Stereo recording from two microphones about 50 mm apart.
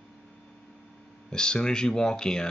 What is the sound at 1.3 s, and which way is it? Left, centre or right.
Speech, centre.